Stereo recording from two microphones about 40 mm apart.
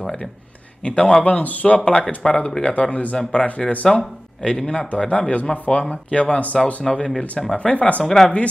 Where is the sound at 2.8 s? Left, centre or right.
Left.